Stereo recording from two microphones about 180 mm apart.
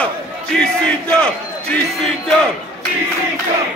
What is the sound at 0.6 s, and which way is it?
Battle cry, 5° left (ahead or behind).